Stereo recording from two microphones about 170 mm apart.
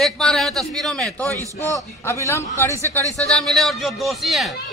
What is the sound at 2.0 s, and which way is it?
Speech, 15° left (ahead or behind).